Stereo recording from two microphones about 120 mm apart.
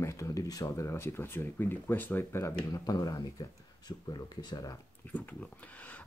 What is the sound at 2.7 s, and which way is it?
Speech, 30° left (ahead or behind).